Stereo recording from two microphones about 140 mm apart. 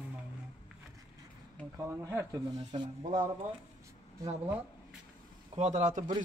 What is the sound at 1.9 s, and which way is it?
Speech, 20° right (ahead or behind).